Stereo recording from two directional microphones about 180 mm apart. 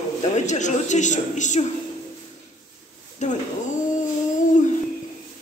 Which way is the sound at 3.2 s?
40° left (ahead or behind).